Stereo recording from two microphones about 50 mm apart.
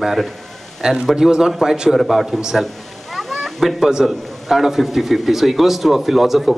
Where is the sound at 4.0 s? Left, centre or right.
Centre.